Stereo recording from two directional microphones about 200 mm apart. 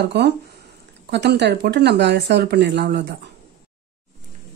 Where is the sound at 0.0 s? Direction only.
55° right (ahead or behind).